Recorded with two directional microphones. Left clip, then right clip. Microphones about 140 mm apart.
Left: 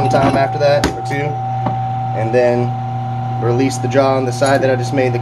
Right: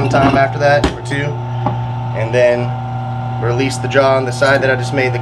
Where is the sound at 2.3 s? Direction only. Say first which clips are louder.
Right 2 dB; 45° left (ahead or behind).